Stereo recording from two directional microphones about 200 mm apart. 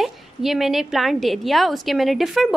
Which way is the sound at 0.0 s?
Centre (ahead or behind).